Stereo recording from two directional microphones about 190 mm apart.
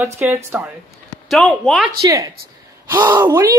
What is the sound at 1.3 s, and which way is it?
Speech, 5° left (ahead or behind).